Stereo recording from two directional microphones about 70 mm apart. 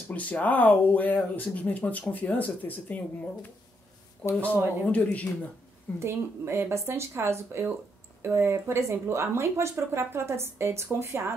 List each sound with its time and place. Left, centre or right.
0.1 s speech: left
5.9 s speech: right